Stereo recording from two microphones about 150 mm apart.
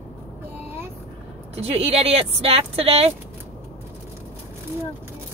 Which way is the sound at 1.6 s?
40° right (ahead or behind).